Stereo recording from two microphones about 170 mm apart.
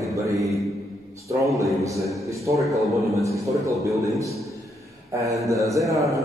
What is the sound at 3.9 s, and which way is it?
Speech, 20° right (ahead or behind).